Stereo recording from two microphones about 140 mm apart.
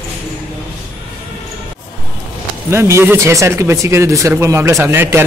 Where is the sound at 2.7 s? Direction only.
20° right (ahead or behind).